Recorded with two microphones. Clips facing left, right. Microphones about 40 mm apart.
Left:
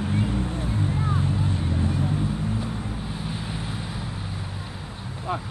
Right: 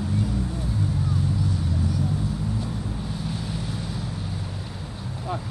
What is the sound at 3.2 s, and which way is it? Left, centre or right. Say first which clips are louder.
Vehicle: right 1 dB; left.